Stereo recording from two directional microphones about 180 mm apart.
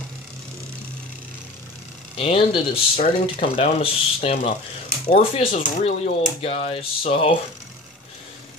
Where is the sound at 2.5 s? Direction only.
30° left (ahead or behind).